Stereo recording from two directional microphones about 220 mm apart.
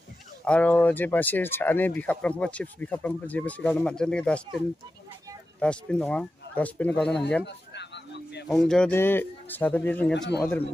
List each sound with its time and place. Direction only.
0.5 s speech: 5° left (ahead or behind)
5.6 s speech: 5° left (ahead or behind)
7.4 s a sound: 50° left (ahead or behind)
8.5 s speech: centre (ahead or behind)